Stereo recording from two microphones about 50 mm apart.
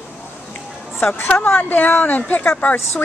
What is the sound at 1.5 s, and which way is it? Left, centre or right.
Speech, left.